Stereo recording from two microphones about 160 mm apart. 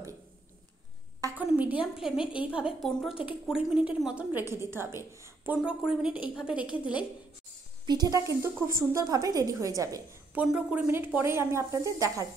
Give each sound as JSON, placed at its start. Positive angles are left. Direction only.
{"t": 1.4, "sound": "a woman's voice", "side_deg": -10}
{"t": 7.8, "sound": "a woman's voice", "side_deg": -25}
{"t": 10.3, "sound": "a woman's voice", "side_deg": -10}